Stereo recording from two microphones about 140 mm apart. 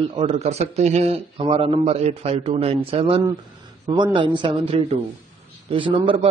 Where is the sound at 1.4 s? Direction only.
40° right (ahead or behind).